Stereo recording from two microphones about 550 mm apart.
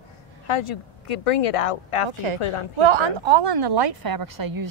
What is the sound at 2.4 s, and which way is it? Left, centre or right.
Speech, left.